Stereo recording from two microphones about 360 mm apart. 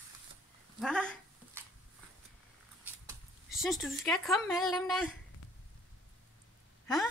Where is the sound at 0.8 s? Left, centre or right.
Centre.